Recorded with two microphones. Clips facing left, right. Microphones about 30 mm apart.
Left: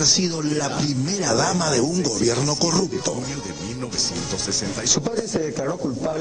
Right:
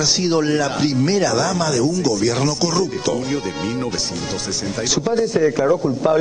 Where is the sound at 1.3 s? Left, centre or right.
Centre.